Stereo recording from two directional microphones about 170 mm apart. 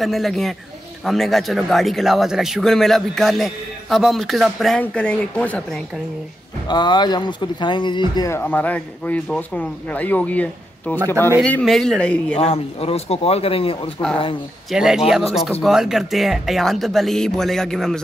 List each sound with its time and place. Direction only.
0.0 s speech: centre (ahead or behind)
6.7 s speech: 25° left (ahead or behind)
8.3 s speech: 10° left (ahead or behind)
12.4 s speech: 35° left (ahead or behind)
14.7 s speech: 5° right (ahead or behind)